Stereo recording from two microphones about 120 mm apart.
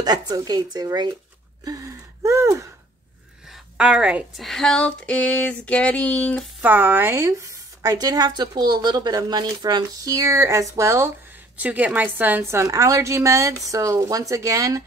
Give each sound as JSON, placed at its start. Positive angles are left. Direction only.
{"t": 0.0, "sound": "a woman's voice", "side_deg": -35}
{"t": 1.6, "sound": "gasp", "side_deg": -30}
{"t": 3.7, "sound": "a woman's voice", "side_deg": -5}
{"t": 4.4, "sound": "a sound", "side_deg": 5}
{"t": 6.6, "sound": "a woman's voice", "side_deg": -15}
{"t": 11.5, "sound": "a woman's voice", "side_deg": -10}